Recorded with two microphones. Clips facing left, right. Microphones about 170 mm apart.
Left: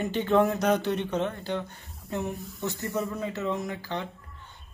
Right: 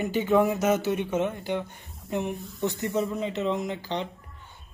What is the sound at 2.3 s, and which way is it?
Speech, centre (ahead or behind).